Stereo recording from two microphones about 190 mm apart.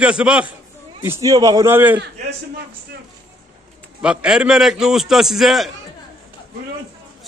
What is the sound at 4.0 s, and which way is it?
A man's voice, 5° right (ahead or behind).